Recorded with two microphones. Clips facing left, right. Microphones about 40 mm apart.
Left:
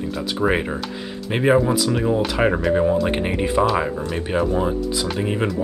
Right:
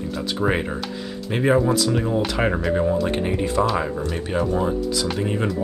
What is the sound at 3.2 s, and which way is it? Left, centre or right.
Speech, left.